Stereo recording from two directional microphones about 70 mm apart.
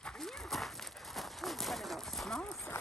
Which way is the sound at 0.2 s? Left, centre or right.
Centre.